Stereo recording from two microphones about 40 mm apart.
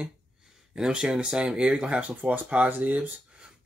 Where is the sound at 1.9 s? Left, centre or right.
Right.